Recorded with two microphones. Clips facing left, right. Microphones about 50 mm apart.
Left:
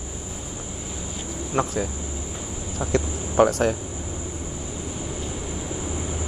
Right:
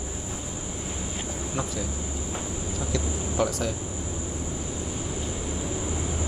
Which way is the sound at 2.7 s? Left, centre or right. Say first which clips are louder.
Left 7 dB; left.